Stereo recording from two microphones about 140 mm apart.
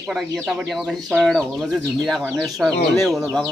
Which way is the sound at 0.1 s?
Centre (ahead or behind).